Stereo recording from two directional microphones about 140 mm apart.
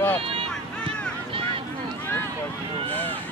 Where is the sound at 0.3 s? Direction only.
40° right (ahead or behind).